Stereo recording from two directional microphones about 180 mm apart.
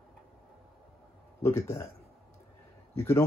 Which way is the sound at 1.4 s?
15° left (ahead or behind).